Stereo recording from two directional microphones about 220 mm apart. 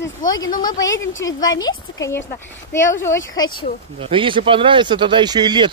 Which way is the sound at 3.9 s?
25° right (ahead or behind).